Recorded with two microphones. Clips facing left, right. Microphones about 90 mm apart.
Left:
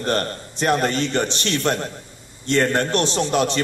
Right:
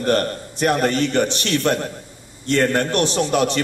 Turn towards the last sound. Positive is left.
turn(degrees=25)  # may be behind; listen again after turning